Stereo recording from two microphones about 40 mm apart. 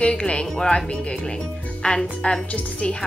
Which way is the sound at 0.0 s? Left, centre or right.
Left.